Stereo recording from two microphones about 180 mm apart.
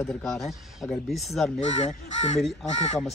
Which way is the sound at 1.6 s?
40° left (ahead or behind).